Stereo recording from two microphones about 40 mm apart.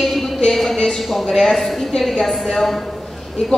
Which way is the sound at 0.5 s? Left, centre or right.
Centre.